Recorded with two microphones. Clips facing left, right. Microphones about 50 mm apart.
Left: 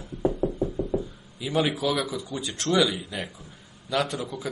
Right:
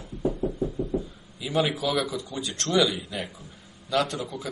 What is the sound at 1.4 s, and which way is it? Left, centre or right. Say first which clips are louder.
Speech: left 1 dB; centre.